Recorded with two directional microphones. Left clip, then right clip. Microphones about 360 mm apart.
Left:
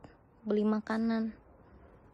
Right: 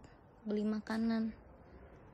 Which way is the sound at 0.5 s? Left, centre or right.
Centre.